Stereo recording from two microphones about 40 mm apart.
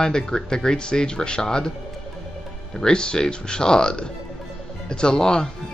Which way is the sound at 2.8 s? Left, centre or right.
Left.